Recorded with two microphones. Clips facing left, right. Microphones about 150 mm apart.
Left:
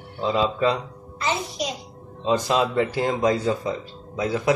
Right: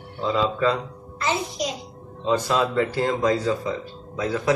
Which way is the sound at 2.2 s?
20° left (ahead or behind).